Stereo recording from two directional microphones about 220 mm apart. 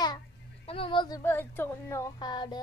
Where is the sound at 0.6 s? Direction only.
25° left (ahead or behind).